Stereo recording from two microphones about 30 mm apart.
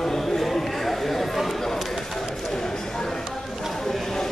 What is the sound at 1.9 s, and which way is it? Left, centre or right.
Bird, centre.